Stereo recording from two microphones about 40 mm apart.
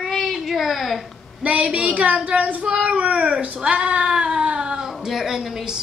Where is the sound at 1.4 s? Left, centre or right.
Right.